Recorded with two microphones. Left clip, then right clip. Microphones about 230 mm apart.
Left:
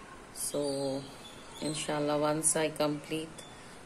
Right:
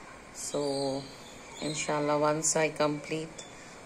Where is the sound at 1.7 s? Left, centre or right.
Centre.